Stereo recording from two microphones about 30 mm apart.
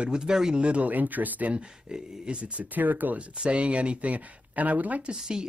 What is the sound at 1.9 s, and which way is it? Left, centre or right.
Speech, right.